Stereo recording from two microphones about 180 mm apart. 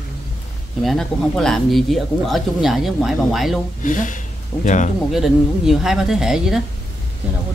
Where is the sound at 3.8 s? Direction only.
45° left (ahead or behind).